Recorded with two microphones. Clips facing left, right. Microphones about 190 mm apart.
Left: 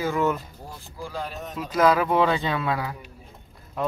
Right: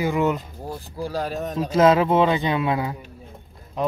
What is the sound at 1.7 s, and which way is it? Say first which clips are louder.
Speech: right 3 dB; 25° right (ahead or behind).